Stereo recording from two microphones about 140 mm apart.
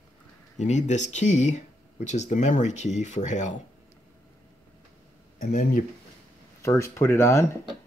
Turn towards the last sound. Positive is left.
turn(degrees=20)  # may be behind; listen again after turning